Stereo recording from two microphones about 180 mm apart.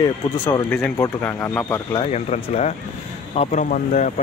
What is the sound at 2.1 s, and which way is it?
Speech, 40° left (ahead or behind).